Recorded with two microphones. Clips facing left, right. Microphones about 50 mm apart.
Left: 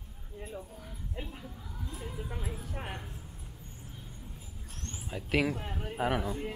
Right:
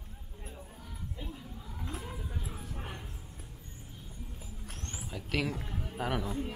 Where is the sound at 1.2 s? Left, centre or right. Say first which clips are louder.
Left 4 dB; left.